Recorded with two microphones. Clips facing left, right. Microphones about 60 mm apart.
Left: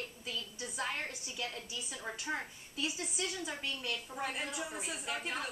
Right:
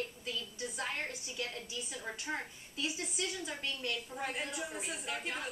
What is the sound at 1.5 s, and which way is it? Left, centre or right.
A woman's voice, centre.